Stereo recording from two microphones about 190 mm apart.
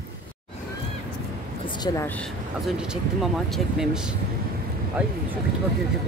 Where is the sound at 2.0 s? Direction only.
5° left (ahead or behind).